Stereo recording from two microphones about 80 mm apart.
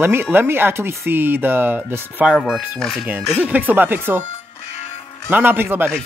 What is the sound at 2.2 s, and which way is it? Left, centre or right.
Speech, centre.